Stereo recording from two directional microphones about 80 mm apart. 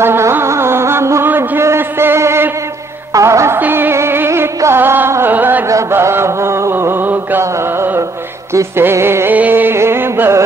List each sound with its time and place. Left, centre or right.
0.0 s music: right
1.3 s a sound: right
3.1 s music: right
3.5 s music: right
4.7 s carnatic music: right
5.7 s chant: right
8.5 s music: right